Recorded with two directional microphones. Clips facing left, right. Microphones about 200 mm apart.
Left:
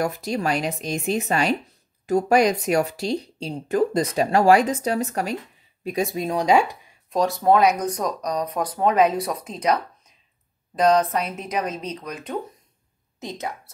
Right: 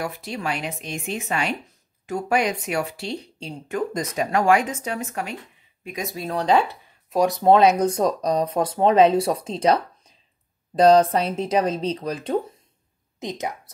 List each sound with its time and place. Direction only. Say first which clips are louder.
0.0 s speech: left 5 dB; 40° left (ahead or behind)
6.1 s speech: even; 15° left (ahead or behind)
7.2 s speech: right 2 dB; 20° right (ahead or behind)
13.2 s speech: right 2 dB; 20° right (ahead or behind)